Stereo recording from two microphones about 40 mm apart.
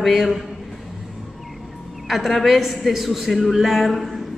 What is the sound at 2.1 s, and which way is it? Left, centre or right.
A woman's voice, centre.